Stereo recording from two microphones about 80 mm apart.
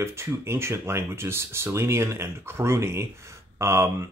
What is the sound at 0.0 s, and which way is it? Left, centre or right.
Speech, right.